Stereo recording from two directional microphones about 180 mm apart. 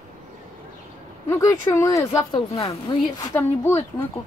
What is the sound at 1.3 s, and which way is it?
Speech, 20° left (ahead or behind).